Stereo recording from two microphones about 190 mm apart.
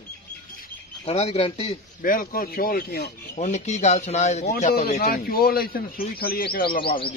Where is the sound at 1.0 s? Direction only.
30° left (ahead or behind).